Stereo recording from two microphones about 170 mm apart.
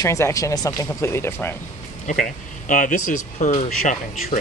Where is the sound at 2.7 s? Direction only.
50° left (ahead or behind).